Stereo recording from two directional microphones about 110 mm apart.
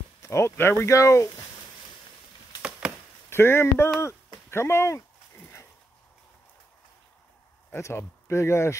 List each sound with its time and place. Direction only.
0.2 s speech: 25° left (ahead or behind)
3.3 s speech: 20° left (ahead or behind)
7.7 s speech: 25° left (ahead or behind)